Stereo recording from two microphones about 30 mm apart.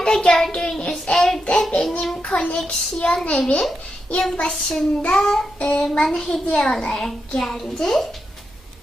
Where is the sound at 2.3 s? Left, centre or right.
Left.